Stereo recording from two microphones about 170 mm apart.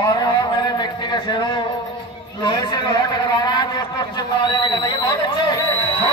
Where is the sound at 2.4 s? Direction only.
25° left (ahead or behind).